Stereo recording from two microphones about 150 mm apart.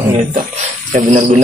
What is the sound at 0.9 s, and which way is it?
Speech, 50° right (ahead or behind).